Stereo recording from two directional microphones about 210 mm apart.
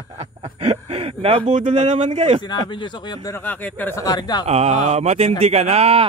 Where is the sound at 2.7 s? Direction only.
20° left (ahead or behind).